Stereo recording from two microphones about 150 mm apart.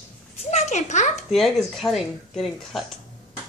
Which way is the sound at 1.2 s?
Centre (ahead or behind).